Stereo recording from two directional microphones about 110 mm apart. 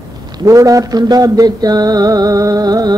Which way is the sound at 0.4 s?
30° right (ahead or behind).